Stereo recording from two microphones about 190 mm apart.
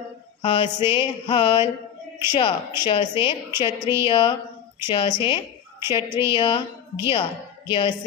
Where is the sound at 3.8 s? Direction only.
15° right (ahead or behind).